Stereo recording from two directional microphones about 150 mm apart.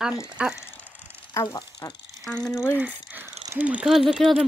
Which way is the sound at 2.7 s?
10° right (ahead or behind).